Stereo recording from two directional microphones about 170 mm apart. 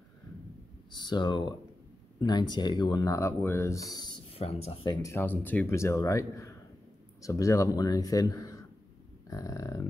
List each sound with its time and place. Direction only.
0.9 s speech: 25° left (ahead or behind)
4.9 s speech: 15° left (ahead or behind)